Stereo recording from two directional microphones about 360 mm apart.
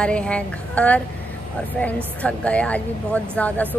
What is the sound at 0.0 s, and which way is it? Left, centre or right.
A woman's voice, centre.